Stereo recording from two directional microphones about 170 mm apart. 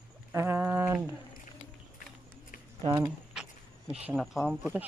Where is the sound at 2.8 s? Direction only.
25° right (ahead or behind).